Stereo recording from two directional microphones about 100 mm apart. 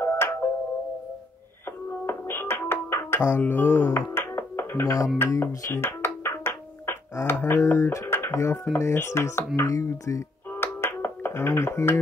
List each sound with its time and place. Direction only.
0.0 s music: 25° left (ahead or behind)
2.0 s music: 25° left (ahead or behind)
5.2 s speech: 30° left (ahead or behind)
5.8 s music: 20° left (ahead or behind)
8.7 s speech: 30° left (ahead or behind)
9.6 s music: 30° left (ahead or behind)